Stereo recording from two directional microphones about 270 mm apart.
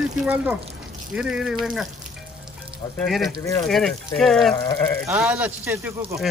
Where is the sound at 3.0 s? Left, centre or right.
Centre.